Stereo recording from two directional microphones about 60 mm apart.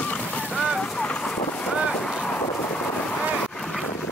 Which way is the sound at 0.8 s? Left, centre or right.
Centre.